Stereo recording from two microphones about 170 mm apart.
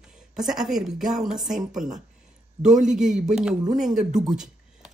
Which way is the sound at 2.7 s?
45° right (ahead or behind).